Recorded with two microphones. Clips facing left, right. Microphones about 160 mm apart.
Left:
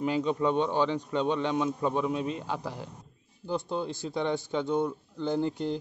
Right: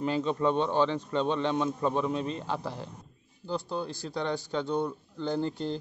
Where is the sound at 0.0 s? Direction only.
10° left (ahead or behind).